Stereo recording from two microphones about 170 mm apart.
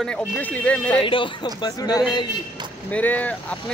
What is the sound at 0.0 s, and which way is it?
Speech, 10° left (ahead or behind).